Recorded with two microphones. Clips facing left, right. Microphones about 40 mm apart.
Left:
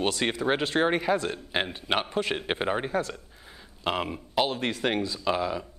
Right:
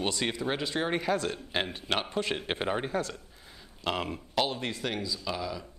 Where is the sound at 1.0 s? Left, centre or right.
Centre.